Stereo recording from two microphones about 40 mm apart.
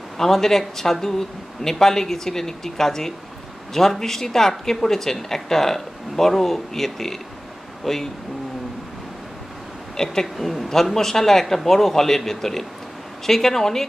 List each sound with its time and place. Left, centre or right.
0.2 s a woman's voice: centre
9.9 s speech: centre
10.2 s a woman's voice: centre